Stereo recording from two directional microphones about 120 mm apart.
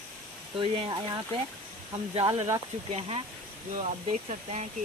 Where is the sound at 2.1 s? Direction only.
55° right (ahead or behind).